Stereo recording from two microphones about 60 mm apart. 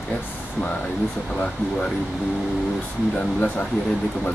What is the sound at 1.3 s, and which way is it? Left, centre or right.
Speech, centre.